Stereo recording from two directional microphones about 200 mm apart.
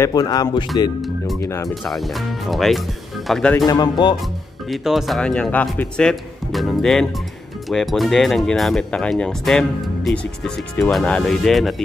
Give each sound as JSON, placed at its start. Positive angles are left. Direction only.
{"t": 0.0, "sound": "speech", "side_deg": 20}
{"t": 1.0, "sound": "speech", "side_deg": 0}
{"t": 1.4, "sound": "speech", "side_deg": 15}
{"t": 1.9, "sound": "speech", "side_deg": 0}
{"t": 3.5, "sound": "speech", "side_deg": 20}
{"t": 4.6, "sound": "speech", "side_deg": 0}